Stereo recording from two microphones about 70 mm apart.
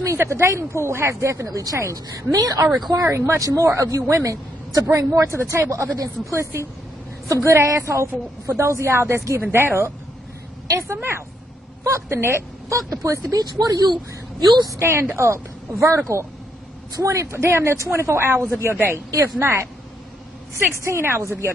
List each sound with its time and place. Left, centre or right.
0.0 s a woman's voice: right
2.9 s speech: right
14.8 s speech: right